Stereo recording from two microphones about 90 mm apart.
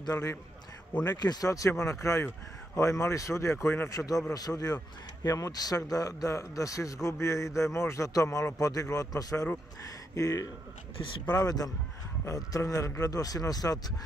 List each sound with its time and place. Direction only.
0.0 s a man's voice: 40° left (ahead or behind)
3.9 s a man's voice: 40° left (ahead or behind)
11.0 s speech: 65° left (ahead or behind)
11.3 s a man's voice: 45° left (ahead or behind)